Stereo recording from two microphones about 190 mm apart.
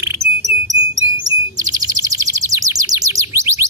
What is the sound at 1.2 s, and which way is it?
Chirp, 20° right (ahead or behind).